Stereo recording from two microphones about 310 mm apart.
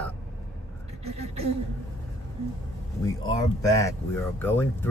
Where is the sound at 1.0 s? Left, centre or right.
Centre.